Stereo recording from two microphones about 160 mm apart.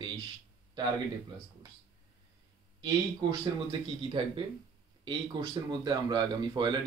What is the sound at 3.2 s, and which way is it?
Speech, 30° right (ahead or behind).